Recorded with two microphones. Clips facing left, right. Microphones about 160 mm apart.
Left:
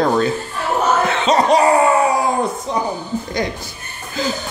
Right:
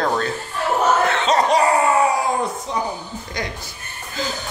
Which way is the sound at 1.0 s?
10° left (ahead or behind).